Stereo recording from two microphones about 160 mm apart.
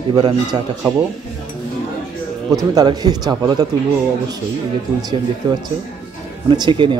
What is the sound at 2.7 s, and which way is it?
Speech, 25° right (ahead or behind).